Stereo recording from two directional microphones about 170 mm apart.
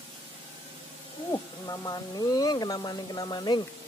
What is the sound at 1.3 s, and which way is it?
Speech, 20° left (ahead or behind).